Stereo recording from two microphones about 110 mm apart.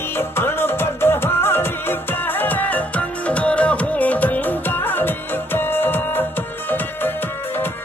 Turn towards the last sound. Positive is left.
turn(degrees=20)  # may be behind; listen again after turning